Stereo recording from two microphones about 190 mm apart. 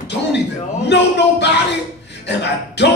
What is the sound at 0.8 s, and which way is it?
Speech, 65° left (ahead or behind).